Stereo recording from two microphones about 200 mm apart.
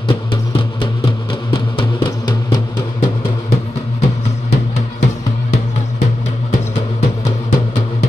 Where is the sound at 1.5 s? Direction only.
25° left (ahead or behind).